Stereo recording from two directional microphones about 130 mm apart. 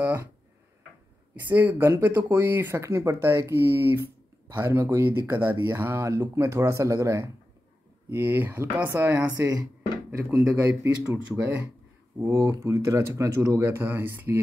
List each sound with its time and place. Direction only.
0.0 s speech: 20° right (ahead or behind)
1.3 s speech: 15° right (ahead or behind)
12.3 s speech: 20° right (ahead or behind)